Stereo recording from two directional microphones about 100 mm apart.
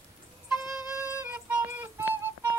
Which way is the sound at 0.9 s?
25° right (ahead or behind).